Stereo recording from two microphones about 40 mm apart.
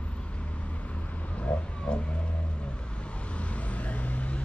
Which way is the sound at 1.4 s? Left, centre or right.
Left.